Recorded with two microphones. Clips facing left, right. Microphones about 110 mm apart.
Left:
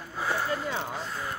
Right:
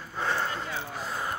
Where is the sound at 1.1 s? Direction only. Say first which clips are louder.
Right 2 dB; 30° right (ahead or behind).